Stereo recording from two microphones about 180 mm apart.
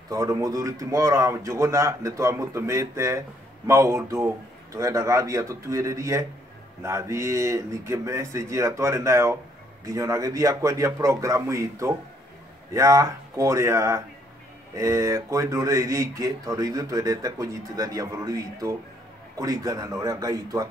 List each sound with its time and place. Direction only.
0.1 s speech: 20° right (ahead or behind)